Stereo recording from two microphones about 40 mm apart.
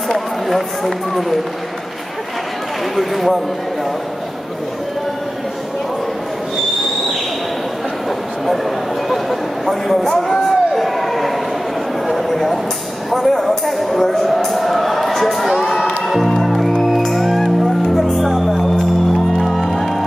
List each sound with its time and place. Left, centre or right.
0.1 s speech: centre
3.0 s speech: centre
9.1 s a sound: centre
16.1 s music: centre